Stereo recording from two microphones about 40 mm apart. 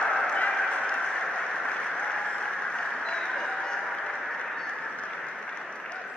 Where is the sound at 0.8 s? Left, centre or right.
Left.